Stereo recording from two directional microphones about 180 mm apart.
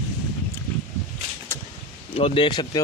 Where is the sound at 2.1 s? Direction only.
30° left (ahead or behind).